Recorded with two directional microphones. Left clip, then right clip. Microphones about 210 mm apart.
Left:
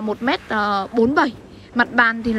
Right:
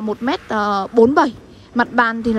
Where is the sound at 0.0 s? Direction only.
20° right (ahead or behind).